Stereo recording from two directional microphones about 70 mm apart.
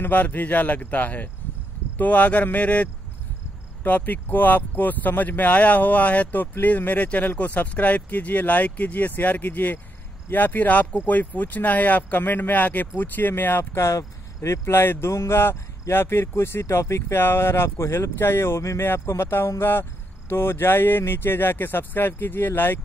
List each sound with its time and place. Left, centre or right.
0.0 s speech: left
13.7 s speech: left